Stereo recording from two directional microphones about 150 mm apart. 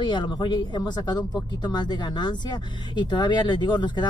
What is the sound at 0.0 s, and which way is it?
Speech, 30° left (ahead or behind).